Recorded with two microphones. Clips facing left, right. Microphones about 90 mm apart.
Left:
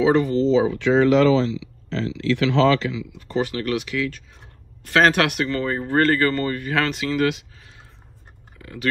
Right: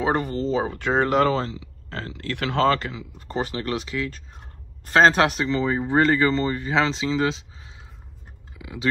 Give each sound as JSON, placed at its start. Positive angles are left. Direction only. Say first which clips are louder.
{"t": 0.0, "sound": "speech", "louder": "left 6 dB", "side_deg": -45}
{"t": 5.5, "sound": "speech", "louder": "right 1 dB", "side_deg": -15}
{"t": 8.6, "sound": "a sound", "louder": "right 1 dB", "side_deg": -10}